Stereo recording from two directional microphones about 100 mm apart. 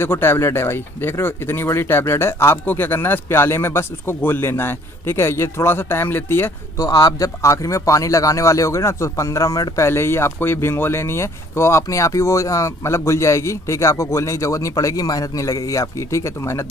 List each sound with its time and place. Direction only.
0.0 s speech: 20° left (ahead or behind)
6.9 s speech: 40° left (ahead or behind)